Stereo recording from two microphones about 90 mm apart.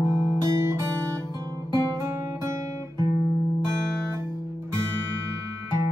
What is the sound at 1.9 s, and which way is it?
Guitar, 30° right (ahead or behind).